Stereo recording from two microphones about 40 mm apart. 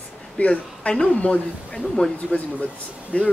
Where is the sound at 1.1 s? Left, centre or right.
Left.